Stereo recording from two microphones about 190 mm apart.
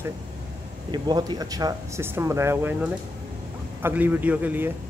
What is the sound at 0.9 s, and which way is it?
Speech, 20° right (ahead or behind).